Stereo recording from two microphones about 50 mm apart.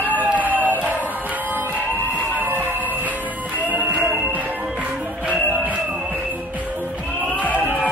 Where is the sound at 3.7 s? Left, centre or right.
Right.